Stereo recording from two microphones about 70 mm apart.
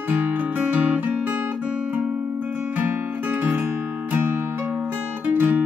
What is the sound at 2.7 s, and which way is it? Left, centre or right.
Music, right.